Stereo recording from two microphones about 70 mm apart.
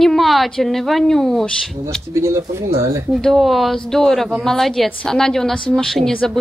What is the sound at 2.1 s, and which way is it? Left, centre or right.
Speech, right.